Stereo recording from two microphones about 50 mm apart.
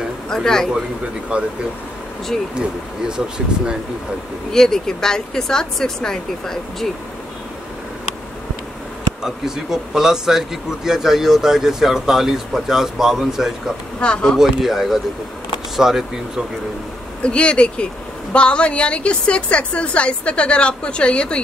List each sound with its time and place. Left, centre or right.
0.3 s speech: centre
1.3 s speech: right
2.5 s speech: centre
4.5 s speech: centre
9.2 s speech: centre
13.9 s a woman's voice: left
14.4 s speech: centre
17.2 s a woman's voice: left